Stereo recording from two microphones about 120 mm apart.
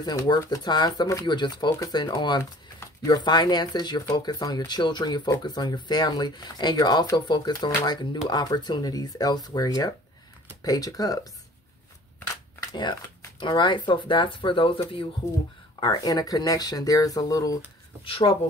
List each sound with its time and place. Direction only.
0.0 s speech: 35° left (ahead or behind)
13.4 s speech: 40° left (ahead or behind)
15.8 s speech: 35° left (ahead or behind)
18.0 s speech: 50° left (ahead or behind)